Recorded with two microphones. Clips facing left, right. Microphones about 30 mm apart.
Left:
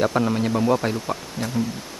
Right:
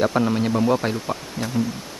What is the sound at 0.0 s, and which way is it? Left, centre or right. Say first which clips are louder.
Speech: right 1 dB; centre.